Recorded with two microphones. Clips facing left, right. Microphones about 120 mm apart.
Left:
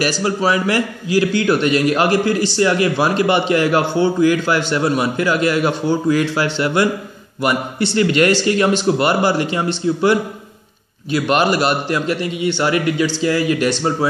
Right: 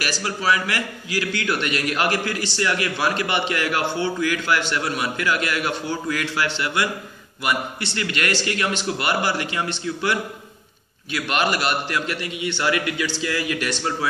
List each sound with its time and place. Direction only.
0.0 s a man's voice: 35° left (ahead or behind)